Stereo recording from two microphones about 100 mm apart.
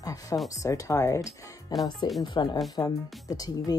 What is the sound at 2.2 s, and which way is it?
Speech, 50° left (ahead or behind).